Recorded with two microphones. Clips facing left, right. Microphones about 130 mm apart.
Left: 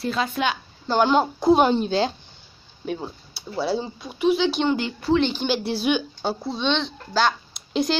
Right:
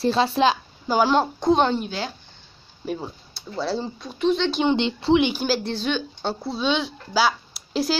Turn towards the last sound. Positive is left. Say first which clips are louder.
# left 1 dB
turn(degrees=-5)  # may be behind; listen again after turning